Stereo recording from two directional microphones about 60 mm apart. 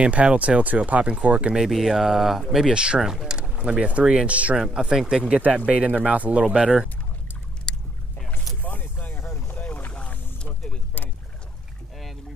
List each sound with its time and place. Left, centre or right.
0.0 s speech: centre
1.5 s speech: centre
2.7 s speech: centre
8.6 s a sound: left
9.5 s boat: left